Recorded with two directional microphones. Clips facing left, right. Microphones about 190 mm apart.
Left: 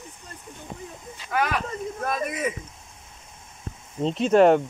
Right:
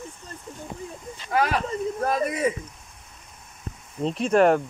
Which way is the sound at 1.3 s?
35° right (ahead or behind).